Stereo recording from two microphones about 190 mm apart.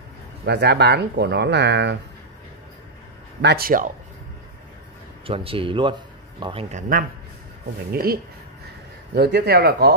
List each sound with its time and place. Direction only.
0.5 s speech: 60° right (ahead or behind)
3.4 s speech: 50° right (ahead or behind)
5.2 s a man's voice: 30° right (ahead or behind)
7.9 s speech: 55° right (ahead or behind)